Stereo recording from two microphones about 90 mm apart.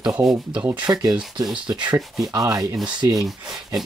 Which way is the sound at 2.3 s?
40° right (ahead or behind).